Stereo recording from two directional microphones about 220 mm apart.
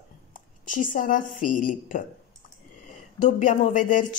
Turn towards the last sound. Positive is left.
turn(degrees=35)  # may be behind; listen again after turning